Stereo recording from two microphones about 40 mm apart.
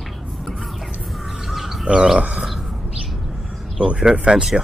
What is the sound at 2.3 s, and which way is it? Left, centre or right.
Speech, centre.